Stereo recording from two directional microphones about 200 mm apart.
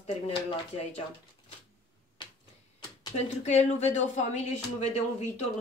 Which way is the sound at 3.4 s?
35° left (ahead or behind).